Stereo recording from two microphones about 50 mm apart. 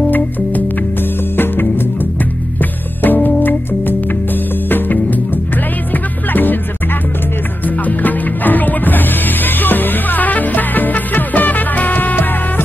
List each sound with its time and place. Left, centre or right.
1.3 s music: left
7.6 s music: left